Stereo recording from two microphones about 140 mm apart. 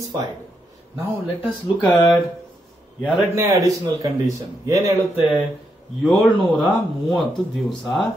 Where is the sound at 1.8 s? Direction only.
25° left (ahead or behind).